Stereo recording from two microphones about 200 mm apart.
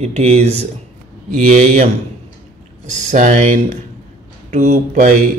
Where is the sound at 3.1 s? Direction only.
35° right (ahead or behind).